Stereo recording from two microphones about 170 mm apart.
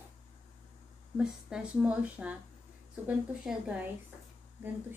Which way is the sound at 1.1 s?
5° right (ahead or behind).